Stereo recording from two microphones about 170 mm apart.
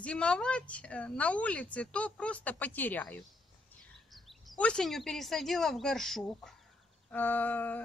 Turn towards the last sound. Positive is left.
turn(degrees=10)  # may be behind; listen again after turning